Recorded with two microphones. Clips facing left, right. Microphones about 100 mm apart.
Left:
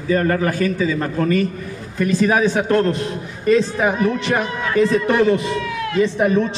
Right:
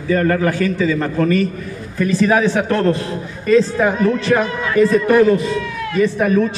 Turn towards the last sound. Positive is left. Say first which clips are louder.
# right 2 dB
turn(degrees=25)  # may be behind; listen again after turning